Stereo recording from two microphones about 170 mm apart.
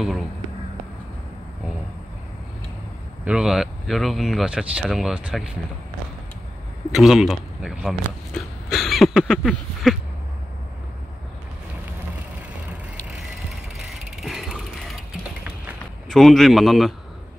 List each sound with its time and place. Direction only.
3.3 s speech: centre (ahead or behind)
6.9 s speech: centre (ahead or behind)
14.2 s ratchet: centre (ahead or behind)
16.1 s speech: centre (ahead or behind)